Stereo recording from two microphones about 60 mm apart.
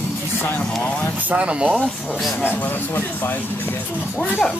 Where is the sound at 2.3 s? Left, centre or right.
Left.